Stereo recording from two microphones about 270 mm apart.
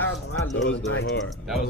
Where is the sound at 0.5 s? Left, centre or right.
Left.